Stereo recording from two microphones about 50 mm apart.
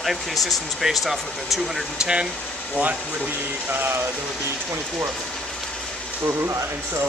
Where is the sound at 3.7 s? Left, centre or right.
Right.